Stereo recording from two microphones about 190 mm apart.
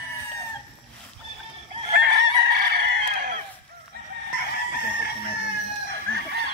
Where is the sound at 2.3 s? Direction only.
55° right (ahead or behind).